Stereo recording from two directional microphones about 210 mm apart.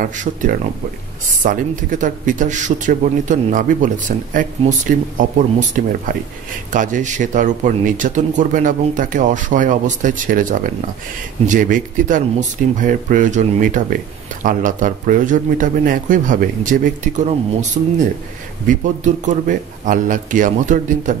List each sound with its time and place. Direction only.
0.0 s a man's voice: 40° right (ahead or behind)